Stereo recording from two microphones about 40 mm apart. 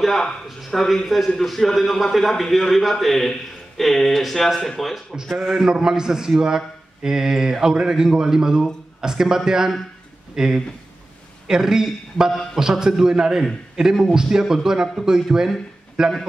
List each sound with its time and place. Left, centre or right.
0.7 s a man's voice: centre
5.7 s a man's voice: centre